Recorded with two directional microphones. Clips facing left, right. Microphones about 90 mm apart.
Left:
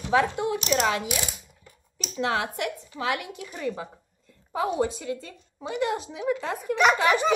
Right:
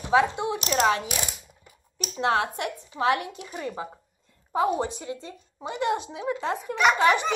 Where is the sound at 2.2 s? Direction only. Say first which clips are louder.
Right 2 dB; 30° right (ahead or behind).